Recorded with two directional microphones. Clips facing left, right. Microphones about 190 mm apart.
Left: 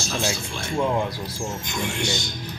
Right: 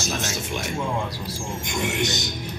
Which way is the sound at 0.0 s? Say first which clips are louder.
Left 1 dB; 20° right (ahead or behind).